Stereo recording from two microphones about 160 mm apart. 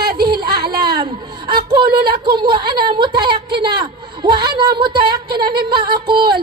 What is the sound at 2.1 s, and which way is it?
A woman's voice, 30° right (ahead or behind).